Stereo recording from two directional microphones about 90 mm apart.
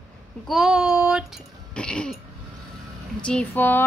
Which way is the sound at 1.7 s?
10° left (ahead or behind).